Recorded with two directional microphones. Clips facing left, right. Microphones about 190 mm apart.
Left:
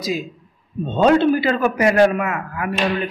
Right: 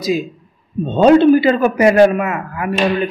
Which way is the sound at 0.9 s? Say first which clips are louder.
Right 6 dB; 15° right (ahead or behind).